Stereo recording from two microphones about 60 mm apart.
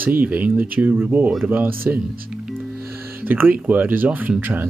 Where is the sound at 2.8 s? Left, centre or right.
Right.